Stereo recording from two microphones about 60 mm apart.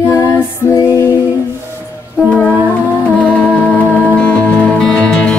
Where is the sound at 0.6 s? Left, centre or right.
Right.